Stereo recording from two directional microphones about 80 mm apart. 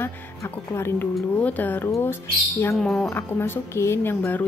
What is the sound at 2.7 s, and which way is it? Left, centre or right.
Speech, centre.